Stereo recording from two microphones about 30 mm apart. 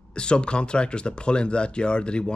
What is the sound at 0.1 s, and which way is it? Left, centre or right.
Speech, left.